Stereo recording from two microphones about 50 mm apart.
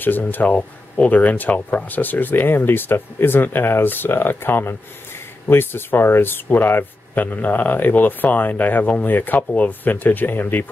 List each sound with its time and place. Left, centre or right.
0.0 s speech: left